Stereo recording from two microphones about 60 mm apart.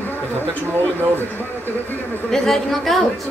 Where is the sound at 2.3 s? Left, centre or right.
Centre.